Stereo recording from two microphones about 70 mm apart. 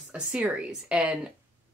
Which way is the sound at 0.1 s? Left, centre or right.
Centre.